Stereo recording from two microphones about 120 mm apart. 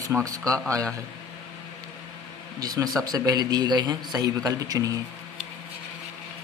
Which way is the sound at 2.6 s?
30° right (ahead or behind).